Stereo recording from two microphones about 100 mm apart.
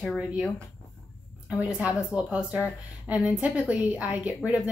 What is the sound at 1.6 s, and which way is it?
A woman's voice, 15° right (ahead or behind).